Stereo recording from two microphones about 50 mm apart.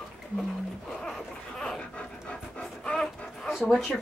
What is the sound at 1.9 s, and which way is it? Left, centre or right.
Pant, centre.